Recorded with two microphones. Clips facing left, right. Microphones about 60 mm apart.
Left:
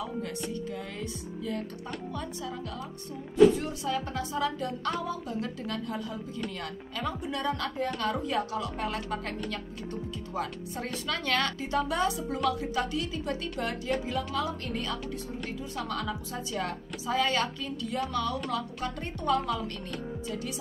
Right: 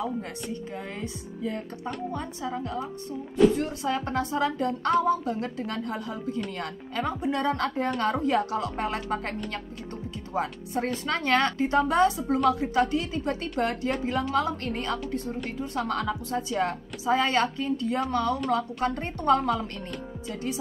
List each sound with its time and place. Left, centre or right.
0.9 s speech: right
3.5 s a woman's voice: right
5.0 s a woman's voice: right